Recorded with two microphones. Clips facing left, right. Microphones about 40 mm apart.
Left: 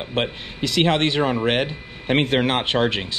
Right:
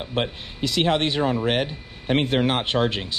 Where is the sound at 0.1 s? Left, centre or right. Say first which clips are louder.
Left 2 dB; left.